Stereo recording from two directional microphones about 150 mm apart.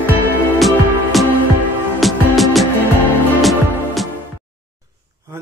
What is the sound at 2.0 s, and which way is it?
Music, centre (ahead or behind).